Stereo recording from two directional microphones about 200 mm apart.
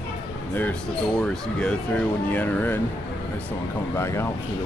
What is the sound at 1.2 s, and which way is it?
Speech, 5° left (ahead or behind).